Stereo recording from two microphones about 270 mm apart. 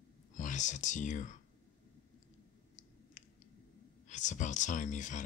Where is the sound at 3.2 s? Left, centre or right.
Left.